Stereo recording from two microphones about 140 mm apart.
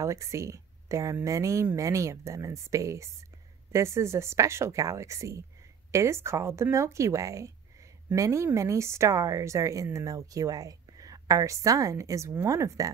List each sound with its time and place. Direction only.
0.0 s speech: 20° right (ahead or behind)